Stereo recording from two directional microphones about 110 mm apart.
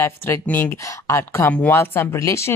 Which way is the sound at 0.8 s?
25° left (ahead or behind).